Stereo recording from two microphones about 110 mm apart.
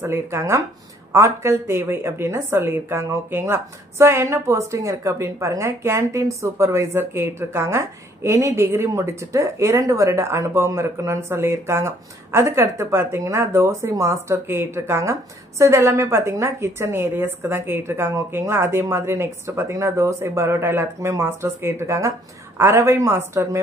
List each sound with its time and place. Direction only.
0.0 s a woman's voice: 25° right (ahead or behind)